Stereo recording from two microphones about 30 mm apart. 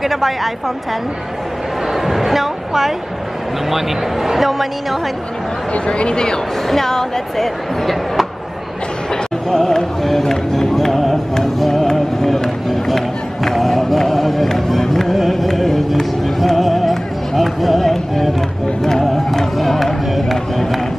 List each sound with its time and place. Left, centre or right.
0.0 s a woman's voice: centre
2.0 s music: centre
3.7 s speech: centre
5.9 s speech: left
6.7 s speech: centre
9.5 s speech: centre
11.6 s music: centre
11.9 s run: centre
14.8 s music: centre
16.9 s run: centre
18.8 s music: centre
19.6 s a sound: centre